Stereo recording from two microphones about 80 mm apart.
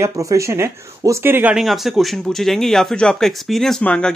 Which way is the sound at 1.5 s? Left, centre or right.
Centre.